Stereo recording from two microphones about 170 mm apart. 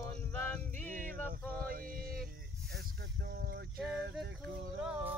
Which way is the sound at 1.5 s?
60° right (ahead or behind).